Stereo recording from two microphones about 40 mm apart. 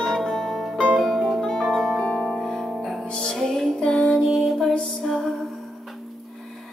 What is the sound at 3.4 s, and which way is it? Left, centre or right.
Music, centre.